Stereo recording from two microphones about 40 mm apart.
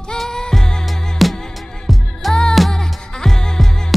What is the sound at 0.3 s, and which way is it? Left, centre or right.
Music, centre.